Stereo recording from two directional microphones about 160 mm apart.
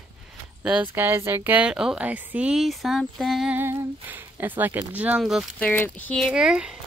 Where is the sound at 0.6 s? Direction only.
10° right (ahead or behind).